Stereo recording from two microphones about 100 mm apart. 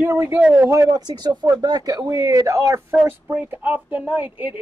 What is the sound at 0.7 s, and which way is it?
Speech, 35° right (ahead or behind).